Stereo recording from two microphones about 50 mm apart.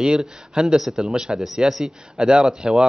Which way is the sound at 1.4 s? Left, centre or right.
Centre.